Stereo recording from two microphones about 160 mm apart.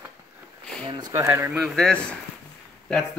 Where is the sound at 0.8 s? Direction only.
30° right (ahead or behind).